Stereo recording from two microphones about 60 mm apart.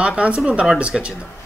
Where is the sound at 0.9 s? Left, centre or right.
Centre.